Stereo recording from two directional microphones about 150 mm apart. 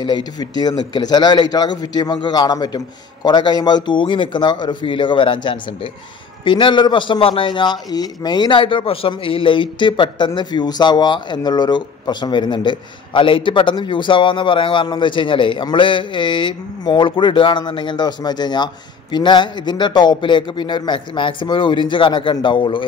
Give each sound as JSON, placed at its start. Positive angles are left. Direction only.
{"t": 0.0, "sound": "a man's voice", "side_deg": 30}